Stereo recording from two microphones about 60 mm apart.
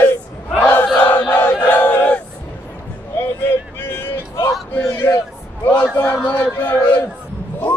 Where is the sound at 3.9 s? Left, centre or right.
Left.